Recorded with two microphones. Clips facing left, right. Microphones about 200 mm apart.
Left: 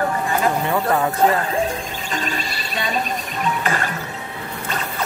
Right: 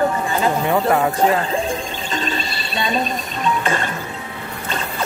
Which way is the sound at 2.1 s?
25° right (ahead or behind).